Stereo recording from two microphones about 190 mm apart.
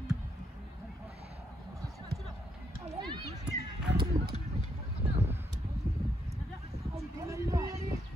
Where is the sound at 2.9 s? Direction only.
25° right (ahead or behind).